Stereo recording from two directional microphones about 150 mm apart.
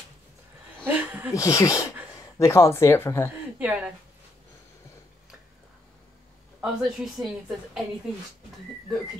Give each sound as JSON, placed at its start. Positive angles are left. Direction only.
{"t": 0.8, "sound": "a sound", "side_deg": -10}
{"t": 1.3, "sound": "speech", "side_deg": 20}
{"t": 3.5, "sound": "a woman's voice", "side_deg": -10}
{"t": 6.6, "sound": "a woman's voice", "side_deg": -5}